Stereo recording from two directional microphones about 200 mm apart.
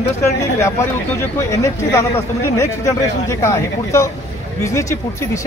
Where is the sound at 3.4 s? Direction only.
15° left (ahead or behind).